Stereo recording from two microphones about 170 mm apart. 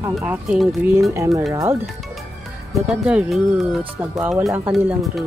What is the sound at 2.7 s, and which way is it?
Speech, 5° right (ahead or behind).